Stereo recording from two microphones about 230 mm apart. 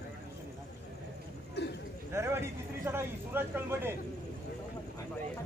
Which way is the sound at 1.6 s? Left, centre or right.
Left.